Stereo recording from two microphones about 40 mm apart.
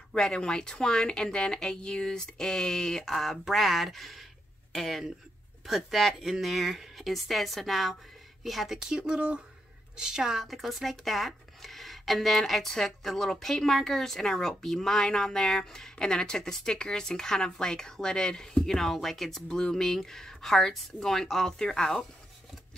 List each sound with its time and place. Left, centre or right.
0.1 s speech: left
3.2 s speech: centre
8.8 s a woman's voice: right
10.3 s speech: centre